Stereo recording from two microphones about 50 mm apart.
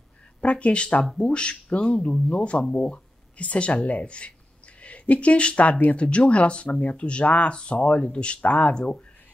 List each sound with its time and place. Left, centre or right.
0.4 s speech: left